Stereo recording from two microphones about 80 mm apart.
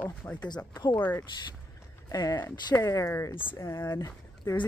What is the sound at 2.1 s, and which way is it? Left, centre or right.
Speech, left.